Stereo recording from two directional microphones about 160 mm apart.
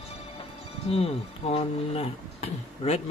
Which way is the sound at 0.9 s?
40° left (ahead or behind).